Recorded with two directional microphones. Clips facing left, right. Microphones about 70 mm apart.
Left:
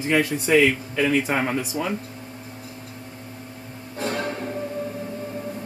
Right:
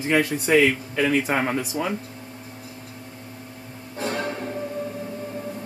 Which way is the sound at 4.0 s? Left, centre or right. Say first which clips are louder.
Even; centre.